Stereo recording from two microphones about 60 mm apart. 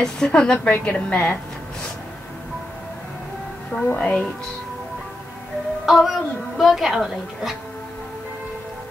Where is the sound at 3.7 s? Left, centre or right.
Left.